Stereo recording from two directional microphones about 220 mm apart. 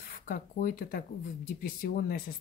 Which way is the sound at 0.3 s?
40° left (ahead or behind).